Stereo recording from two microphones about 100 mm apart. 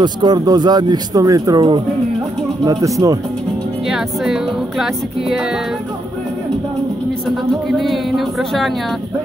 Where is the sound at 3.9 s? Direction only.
5° right (ahead or behind).